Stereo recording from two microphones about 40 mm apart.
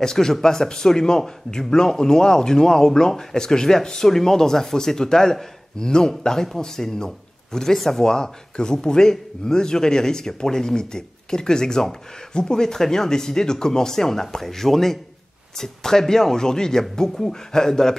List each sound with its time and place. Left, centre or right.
0.0 s speech: centre